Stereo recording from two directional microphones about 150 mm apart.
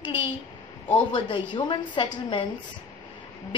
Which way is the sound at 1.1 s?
35° left (ahead or behind).